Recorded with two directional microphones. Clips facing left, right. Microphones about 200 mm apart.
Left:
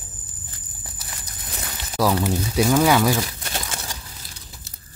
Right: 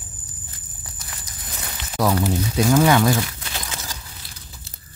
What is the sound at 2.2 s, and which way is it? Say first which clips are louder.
Speech: even; 5° left (ahead or behind).